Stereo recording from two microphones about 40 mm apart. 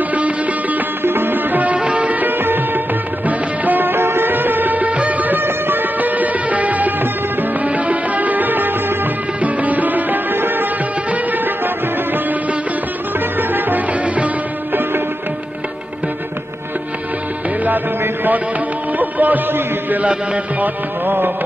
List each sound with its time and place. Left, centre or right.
0.1 s music: right
1.0 s music: right
1.8 s music: right
9.4 s music: right
13.4 s music: right
14.0 s music: right
18.9 s music: right
20.6 s music: right